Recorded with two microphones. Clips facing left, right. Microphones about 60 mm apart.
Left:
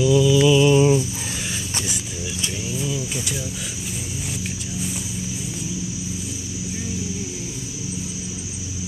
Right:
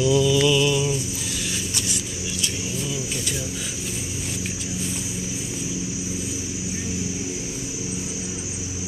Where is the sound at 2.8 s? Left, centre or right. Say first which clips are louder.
Left 4 dB; centre.